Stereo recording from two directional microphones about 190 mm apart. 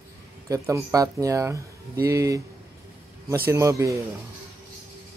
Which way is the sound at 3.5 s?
15° right (ahead or behind).